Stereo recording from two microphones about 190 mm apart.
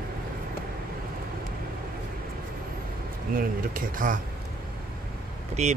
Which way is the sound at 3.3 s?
50° right (ahead or behind).